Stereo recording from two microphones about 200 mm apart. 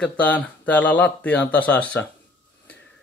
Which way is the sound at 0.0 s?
5° left (ahead or behind).